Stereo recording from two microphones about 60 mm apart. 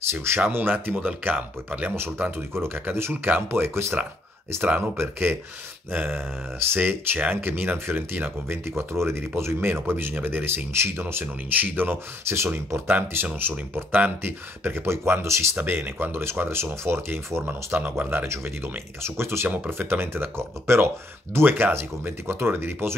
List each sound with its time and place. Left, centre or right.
0.1 s speech: right
0.4 s speech: right
2.0 s speech: right
12.8 s speech: right
15.5 s speech: right